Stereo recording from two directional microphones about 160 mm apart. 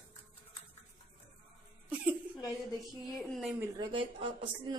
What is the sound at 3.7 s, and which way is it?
A woman's voice, 30° right (ahead or behind).